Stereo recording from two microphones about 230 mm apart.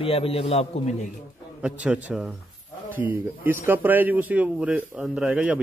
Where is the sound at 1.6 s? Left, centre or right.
Centre.